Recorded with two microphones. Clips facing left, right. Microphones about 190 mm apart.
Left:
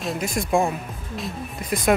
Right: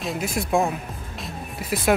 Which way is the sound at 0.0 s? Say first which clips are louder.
Left 1 dB; centre (ahead or behind).